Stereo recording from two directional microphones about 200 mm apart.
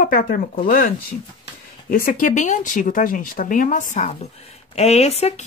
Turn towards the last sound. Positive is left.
turn(degrees=30)  # may be behind; listen again after turning